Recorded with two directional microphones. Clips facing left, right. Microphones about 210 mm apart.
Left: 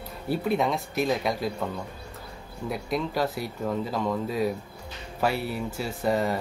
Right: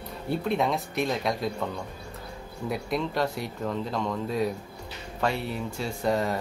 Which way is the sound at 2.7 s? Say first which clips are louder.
Even; centre (ahead or behind).